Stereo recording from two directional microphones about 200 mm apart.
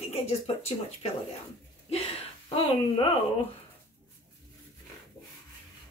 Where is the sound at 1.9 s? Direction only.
30° left (ahead or behind).